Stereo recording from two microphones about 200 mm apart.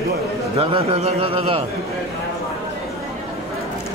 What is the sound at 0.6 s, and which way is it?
A man's voice, 30° right (ahead or behind).